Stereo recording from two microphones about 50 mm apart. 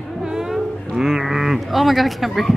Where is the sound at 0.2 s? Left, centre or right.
Centre.